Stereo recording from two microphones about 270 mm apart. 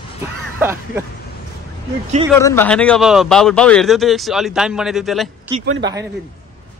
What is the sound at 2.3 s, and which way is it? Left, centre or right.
A man's voice, centre.